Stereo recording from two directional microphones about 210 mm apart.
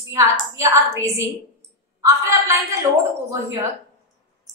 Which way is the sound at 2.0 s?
15° right (ahead or behind).